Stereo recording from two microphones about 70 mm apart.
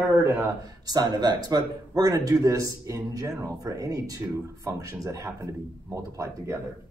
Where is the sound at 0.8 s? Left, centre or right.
Right.